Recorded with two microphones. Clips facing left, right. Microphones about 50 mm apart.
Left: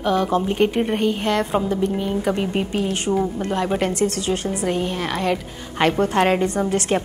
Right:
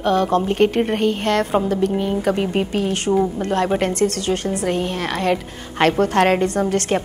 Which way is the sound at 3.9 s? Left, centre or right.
Right.